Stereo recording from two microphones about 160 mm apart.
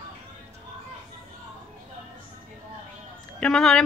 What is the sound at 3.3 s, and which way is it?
Speech, 5° left (ahead or behind).